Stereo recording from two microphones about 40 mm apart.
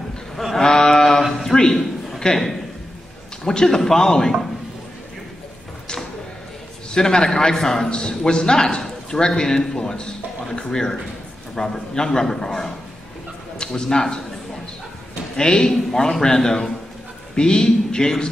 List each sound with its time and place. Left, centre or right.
0.6 s a sound: centre
3.4 s a man's voice: centre
6.9 s a man's voice: centre
15.3 s a man's voice: centre